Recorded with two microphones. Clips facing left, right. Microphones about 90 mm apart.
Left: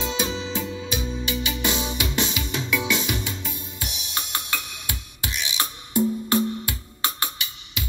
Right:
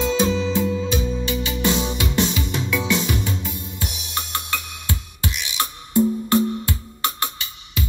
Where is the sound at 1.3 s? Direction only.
20° right (ahead or behind).